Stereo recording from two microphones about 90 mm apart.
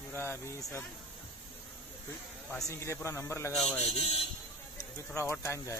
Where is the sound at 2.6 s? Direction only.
35° left (ahead or behind).